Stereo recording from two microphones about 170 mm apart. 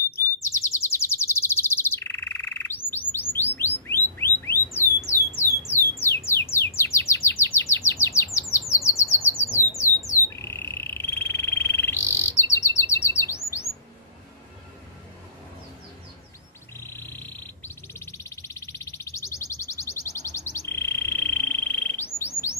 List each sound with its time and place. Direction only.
0.1 s chirp: 15° left (ahead or behind)
3.5 s bird: 15° left (ahead or behind)
4.7 s a sound: 15° left (ahead or behind)
6.8 s bird: 15° left (ahead or behind)
7.2 s chirp: 15° left (ahead or behind)
9.4 s squawk: 15° left (ahead or behind)
10.3 s frog: 15° left (ahead or behind)
16.7 s a sound: 15° left (ahead or behind)